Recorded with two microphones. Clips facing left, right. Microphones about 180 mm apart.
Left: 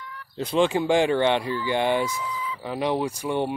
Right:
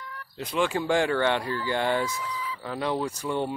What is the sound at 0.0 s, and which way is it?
Bird, 45° right (ahead or behind).